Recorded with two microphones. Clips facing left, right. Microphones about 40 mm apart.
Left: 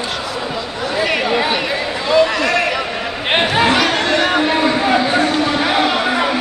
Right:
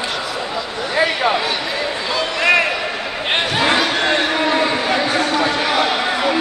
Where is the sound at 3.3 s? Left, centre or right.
Centre.